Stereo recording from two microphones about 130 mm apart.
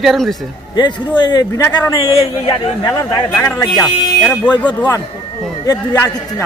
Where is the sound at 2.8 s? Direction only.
30° left (ahead or behind).